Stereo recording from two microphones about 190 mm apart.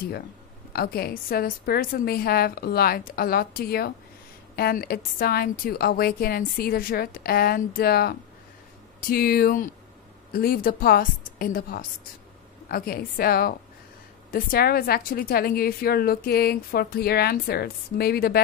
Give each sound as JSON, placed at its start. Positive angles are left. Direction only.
{"t": 0.7, "sound": "a woman's voice", "side_deg": 55}